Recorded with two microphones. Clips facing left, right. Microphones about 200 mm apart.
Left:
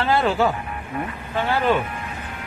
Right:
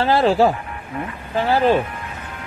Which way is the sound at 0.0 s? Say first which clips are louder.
Right 4 dB; 35° right (ahead or behind).